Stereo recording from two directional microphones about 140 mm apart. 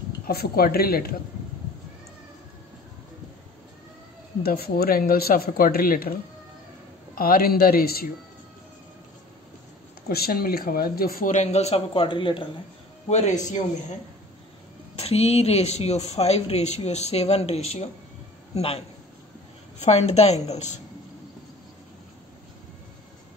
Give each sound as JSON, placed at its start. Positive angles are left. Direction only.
{"t": 0.3, "sound": "speech", "side_deg": 90}
{"t": 4.4, "sound": "speech", "side_deg": 90}
{"t": 7.2, "sound": "speech", "side_deg": 90}
{"t": 10.0, "sound": "speech", "side_deg": 90}
{"t": 13.1, "sound": "speech", "side_deg": 55}
{"t": 15.0, "sound": "a woman's voice", "side_deg": 45}
{"t": 19.8, "sound": "a woman's voice", "side_deg": 50}